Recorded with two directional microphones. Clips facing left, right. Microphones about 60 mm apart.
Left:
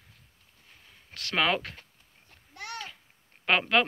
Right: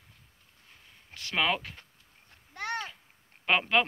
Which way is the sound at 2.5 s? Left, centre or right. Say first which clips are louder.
Right 5 dB; right.